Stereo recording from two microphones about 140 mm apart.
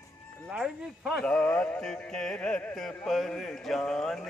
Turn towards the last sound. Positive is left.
turn(degrees=5)  # may be behind; listen again after turning